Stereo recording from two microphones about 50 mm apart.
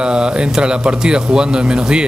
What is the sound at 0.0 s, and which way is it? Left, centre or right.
Speech, centre.